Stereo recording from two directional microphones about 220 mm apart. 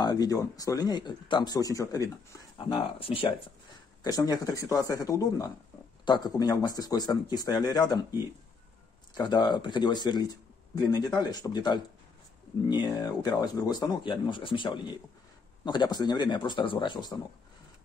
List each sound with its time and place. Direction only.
0.0 s speech: 15° left (ahead or behind)
9.1 s speech: 20° left (ahead or behind)